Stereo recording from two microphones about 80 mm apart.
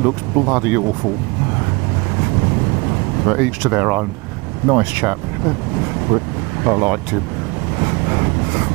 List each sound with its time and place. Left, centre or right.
0.0 s speech: right
3.3 s speech: right
6.1 s speech: right
7.8 s vehicle: right